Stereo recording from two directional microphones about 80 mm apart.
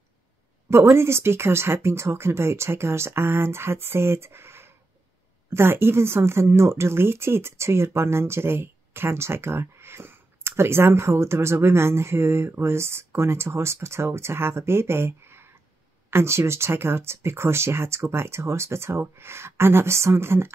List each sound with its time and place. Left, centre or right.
0.7 s speech: right